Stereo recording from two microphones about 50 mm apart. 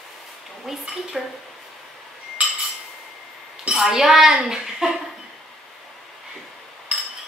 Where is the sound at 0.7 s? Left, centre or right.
Centre.